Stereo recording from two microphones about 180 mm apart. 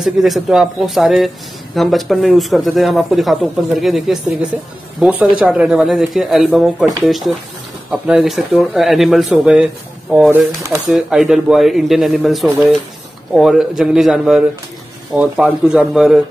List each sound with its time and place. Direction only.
0.0 s speech: centre (ahead or behind)